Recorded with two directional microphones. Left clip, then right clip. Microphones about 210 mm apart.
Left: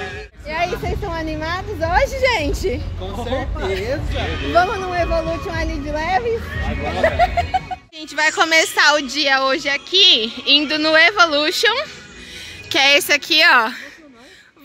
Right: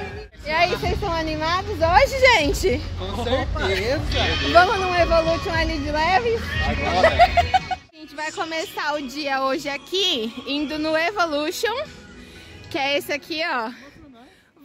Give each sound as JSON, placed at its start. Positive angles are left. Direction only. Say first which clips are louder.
{"t": 0.5, "sound": "speech", "louder": "right 1 dB", "side_deg": -20}
{"t": 8.2, "sound": "speech", "louder": "left 12 dB", "side_deg": 5}